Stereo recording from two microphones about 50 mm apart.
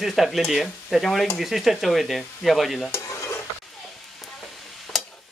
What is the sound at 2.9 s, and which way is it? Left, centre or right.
Stir, left.